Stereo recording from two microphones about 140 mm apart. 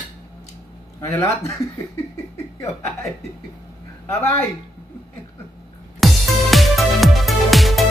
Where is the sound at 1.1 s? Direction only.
20° left (ahead or behind).